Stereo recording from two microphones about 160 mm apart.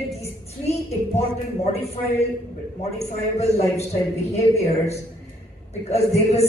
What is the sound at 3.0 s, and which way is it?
A woman's voice, 40° left (ahead or behind).